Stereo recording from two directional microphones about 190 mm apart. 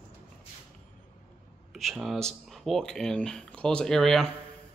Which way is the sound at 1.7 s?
Centre (ahead or behind).